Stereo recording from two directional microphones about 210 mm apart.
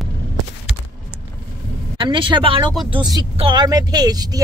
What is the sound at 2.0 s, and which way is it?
Speech, 25° right (ahead or behind).